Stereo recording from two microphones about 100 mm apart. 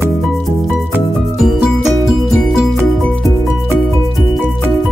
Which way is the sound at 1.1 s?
5° right (ahead or behind).